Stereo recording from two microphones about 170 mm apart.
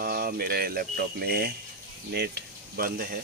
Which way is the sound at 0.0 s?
60° right (ahead or behind).